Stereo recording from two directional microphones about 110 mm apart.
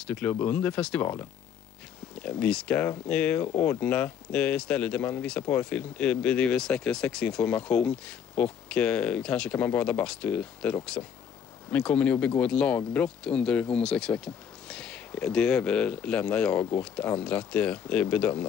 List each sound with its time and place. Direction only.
0.0 s speech: 10° left (ahead or behind)
2.1 s speech: 10° left (ahead or behind)